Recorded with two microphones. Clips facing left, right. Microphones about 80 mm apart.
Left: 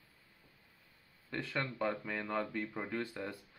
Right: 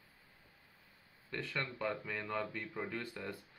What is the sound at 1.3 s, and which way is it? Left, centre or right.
Speech, centre.